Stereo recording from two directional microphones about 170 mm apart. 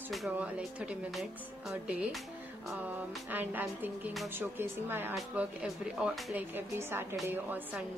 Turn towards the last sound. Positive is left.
turn(degrees=-10)  # may be behind; listen again after turning